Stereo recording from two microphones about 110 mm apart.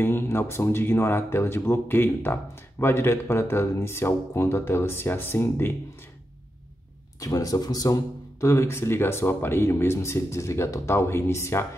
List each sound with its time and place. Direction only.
0.0 s speech: 20° left (ahead or behind)
7.2 s speech: 30° left (ahead or behind)